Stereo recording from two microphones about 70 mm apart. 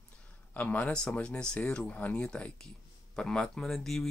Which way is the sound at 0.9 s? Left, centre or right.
Centre.